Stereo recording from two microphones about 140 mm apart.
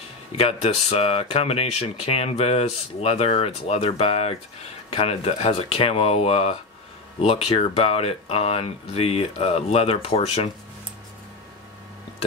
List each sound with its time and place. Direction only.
0.4 s speech: 45° left (ahead or behind)